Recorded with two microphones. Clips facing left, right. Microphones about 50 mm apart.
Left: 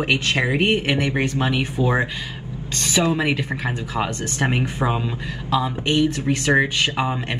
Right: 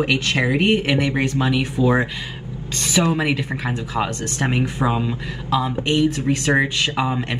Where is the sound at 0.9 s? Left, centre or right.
Centre.